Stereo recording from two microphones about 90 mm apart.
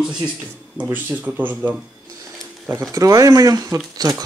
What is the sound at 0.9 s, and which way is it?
Speech, 20° right (ahead or behind).